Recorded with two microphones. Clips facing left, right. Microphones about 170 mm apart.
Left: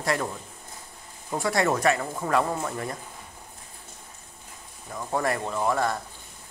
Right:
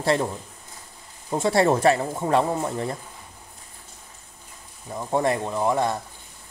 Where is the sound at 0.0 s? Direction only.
25° right (ahead or behind).